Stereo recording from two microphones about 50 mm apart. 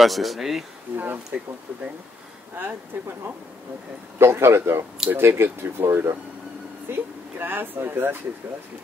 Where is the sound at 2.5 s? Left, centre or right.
Right.